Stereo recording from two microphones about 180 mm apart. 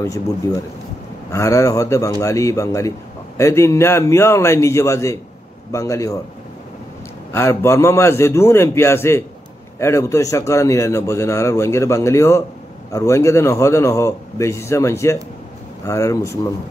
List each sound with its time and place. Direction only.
1.3 s speech: 15° left (ahead or behind)
7.3 s speech: 15° left (ahead or behind)